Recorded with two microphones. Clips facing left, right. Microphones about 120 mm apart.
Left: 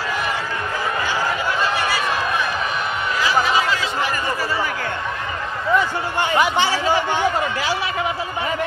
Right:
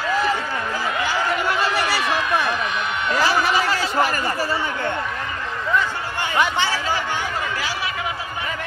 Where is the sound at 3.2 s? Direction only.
40° right (ahead or behind).